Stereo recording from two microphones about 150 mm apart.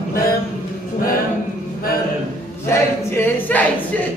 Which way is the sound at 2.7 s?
15° left (ahead or behind).